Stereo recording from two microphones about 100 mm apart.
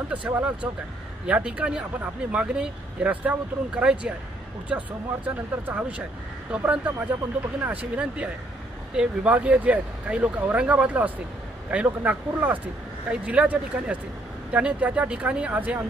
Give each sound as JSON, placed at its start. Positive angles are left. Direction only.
{"t": 0.1, "sound": "speech", "side_deg": -15}